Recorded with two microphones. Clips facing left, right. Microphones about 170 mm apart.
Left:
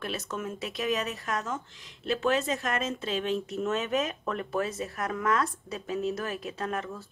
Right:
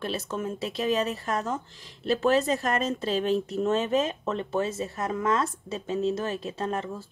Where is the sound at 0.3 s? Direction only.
30° right (ahead or behind).